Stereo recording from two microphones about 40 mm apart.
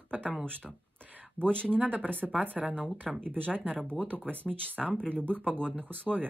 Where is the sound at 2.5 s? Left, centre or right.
Right.